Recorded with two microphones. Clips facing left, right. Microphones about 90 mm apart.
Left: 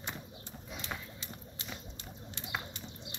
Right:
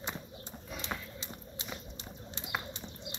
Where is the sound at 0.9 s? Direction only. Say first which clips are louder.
Right 2 dB; 10° right (ahead or behind).